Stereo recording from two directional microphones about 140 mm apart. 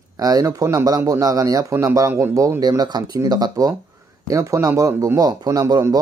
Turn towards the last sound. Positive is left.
turn(degrees=-25)  # may be behind; listen again after turning